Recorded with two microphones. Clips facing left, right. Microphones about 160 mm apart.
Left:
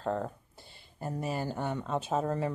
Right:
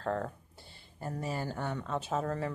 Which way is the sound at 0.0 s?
20° left (ahead or behind).